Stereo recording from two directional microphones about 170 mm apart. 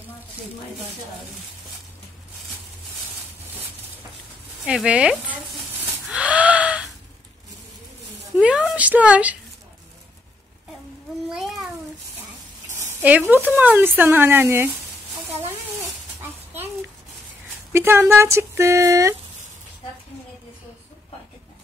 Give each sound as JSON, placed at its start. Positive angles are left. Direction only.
{"t": 4.6, "sound": "speech", "side_deg": -5}
{"t": 5.9, "sound": "gasp", "side_deg": -5}
{"t": 8.4, "sound": "speech", "side_deg": -5}
{"t": 11.2, "sound": "a sound", "side_deg": 0}
{"t": 12.7, "sound": "speech", "side_deg": -10}
{"t": 17.7, "sound": "speech", "side_deg": -15}